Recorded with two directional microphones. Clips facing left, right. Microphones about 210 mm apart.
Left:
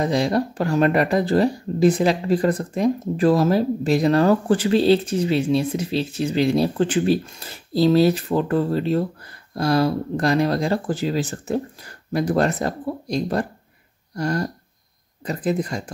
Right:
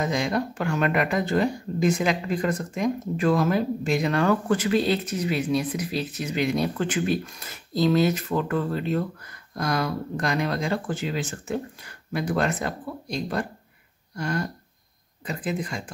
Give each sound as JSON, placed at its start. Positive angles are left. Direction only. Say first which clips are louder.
{"t": 0.0, "sound": "speech", "louder": "left 5 dB", "side_deg": 35}